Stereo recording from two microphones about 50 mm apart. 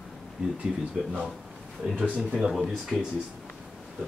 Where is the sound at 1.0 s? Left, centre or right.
Centre.